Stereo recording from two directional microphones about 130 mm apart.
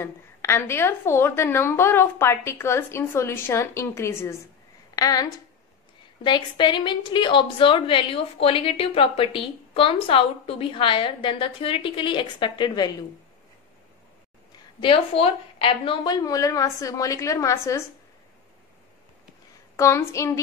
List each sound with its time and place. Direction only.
0.0 s a woman's voice: 20° left (ahead or behind)
14.8 s a woman's voice: 45° left (ahead or behind); by 17.8 s 25° left (ahead or behind)
19.8 s a woman's voice: 20° left (ahead or behind)